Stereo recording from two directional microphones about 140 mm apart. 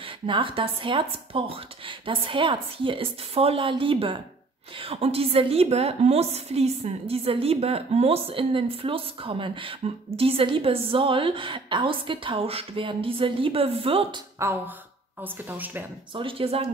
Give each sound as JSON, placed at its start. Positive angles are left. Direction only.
{"t": 0.3, "sound": "a woman's voice", "side_deg": -40}
{"t": 15.2, "sound": "speech", "side_deg": -15}
{"t": 16.2, "sound": "a woman's voice", "side_deg": -40}